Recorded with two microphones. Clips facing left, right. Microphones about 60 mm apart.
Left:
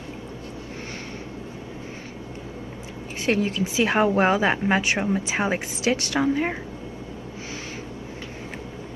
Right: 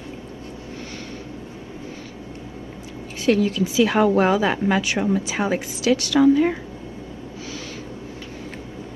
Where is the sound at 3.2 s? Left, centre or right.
Left.